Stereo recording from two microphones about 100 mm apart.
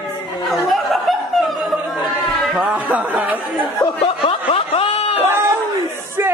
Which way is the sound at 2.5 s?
15° right (ahead or behind).